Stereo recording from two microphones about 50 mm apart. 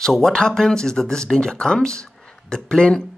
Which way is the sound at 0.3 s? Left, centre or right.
Centre.